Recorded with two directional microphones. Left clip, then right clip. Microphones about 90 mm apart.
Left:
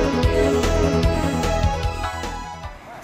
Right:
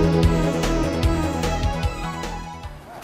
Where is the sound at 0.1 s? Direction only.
Centre (ahead or behind).